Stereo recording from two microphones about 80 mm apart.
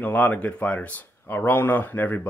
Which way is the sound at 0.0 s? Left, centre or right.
Left.